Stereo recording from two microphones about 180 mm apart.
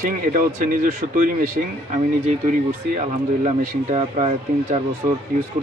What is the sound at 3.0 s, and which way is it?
Speech, 40° right (ahead or behind).